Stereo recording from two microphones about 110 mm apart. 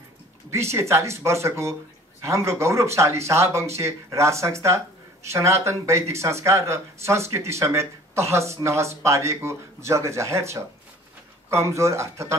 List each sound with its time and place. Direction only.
0.5 s speech: 25° right (ahead or behind)